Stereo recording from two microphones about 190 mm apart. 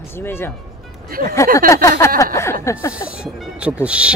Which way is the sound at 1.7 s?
15° left (ahead or behind).